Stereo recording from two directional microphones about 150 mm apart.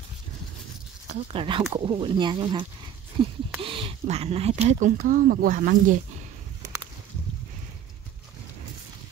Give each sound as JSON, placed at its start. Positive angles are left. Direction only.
{"t": 1.3, "sound": "speech", "side_deg": -35}
{"t": 3.6, "sound": "a sound", "side_deg": -35}
{"t": 4.6, "sound": "speech", "side_deg": -55}